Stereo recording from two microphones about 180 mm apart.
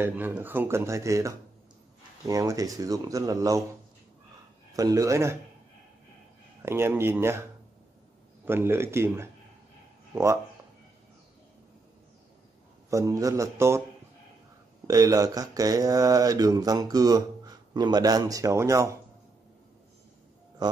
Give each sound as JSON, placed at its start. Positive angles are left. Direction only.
{"t": 0.0, "sound": "a man's voice", "side_deg": -10}
{"t": 4.7, "sound": "a man's voice", "side_deg": -20}
{"t": 6.6, "sound": "a man's voice", "side_deg": -15}
{"t": 8.5, "sound": "a man's voice", "side_deg": -15}
{"t": 12.9, "sound": "a man's voice", "side_deg": -20}
{"t": 14.9, "sound": "speech", "side_deg": -20}
{"t": 20.6, "sound": "speech", "side_deg": -20}